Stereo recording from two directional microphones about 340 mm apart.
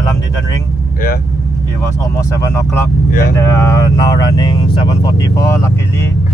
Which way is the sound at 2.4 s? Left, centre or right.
Centre.